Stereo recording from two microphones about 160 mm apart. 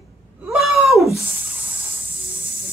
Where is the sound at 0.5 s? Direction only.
Centre (ahead or behind).